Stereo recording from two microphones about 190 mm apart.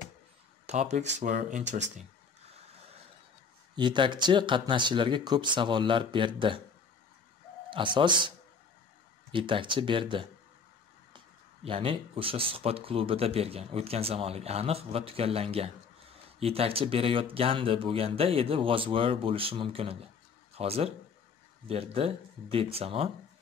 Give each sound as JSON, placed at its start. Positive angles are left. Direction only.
{"t": 0.7, "sound": "speech", "side_deg": -35}
{"t": 3.7, "sound": "speech", "side_deg": -25}
{"t": 7.7, "sound": "speech", "side_deg": -25}
{"t": 9.3, "sound": "speech", "side_deg": -25}